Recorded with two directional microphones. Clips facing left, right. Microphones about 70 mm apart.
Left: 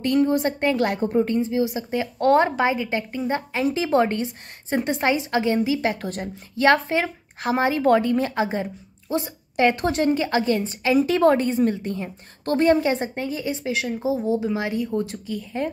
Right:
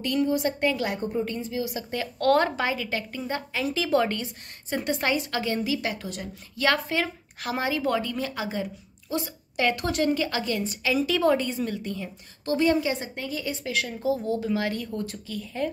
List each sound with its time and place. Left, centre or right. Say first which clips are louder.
0.0 s a woman's voice: left 5 dB; left
0.8 s a woman's voice: left 7 dB; left
1.2 s a woman's voice: left 8 dB; left
5.9 s a woman's voice: left 6 dB; left
6.5 s a woman's voice: left 6 dB; left